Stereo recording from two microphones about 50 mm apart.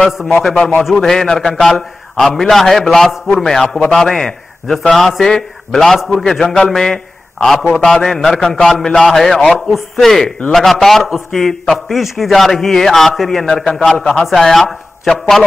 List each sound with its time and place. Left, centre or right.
0.8 s a man's voice: centre
4.9 s a man's voice: centre
6.2 s a man's voice: centre
13.7 s a man's voice: centre
14.4 s a man's voice: centre